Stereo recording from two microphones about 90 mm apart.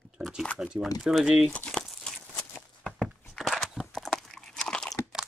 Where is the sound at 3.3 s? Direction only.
Centre (ahead or behind).